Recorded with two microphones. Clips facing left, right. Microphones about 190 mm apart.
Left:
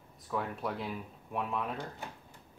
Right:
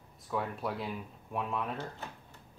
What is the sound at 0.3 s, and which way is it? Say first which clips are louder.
Speech: right 1 dB; centre (ahead or behind).